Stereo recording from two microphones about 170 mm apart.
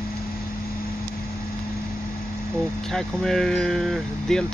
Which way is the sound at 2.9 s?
Centre (ahead or behind).